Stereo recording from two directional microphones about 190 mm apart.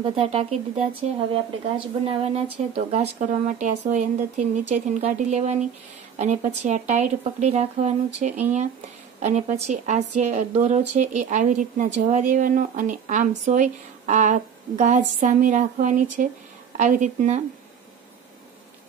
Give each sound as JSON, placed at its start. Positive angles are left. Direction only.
{"t": 0.0, "sound": "speech", "side_deg": -30}